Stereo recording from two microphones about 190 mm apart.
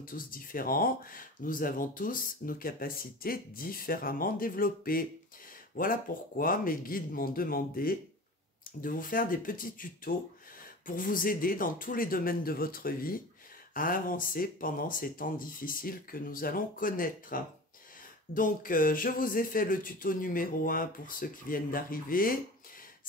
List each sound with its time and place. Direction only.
0.0 s speech: 50° left (ahead or behind)